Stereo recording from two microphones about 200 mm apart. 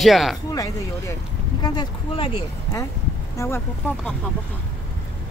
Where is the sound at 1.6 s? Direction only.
20° left (ahead or behind).